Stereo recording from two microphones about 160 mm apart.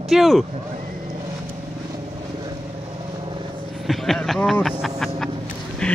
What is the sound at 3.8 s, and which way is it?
Speech, centre (ahead or behind).